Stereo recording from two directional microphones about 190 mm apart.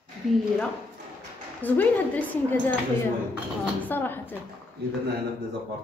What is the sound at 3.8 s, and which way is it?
Speech, 10° left (ahead or behind).